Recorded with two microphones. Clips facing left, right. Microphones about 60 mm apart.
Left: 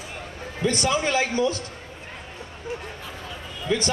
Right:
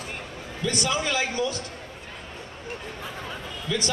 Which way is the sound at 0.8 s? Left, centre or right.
Left.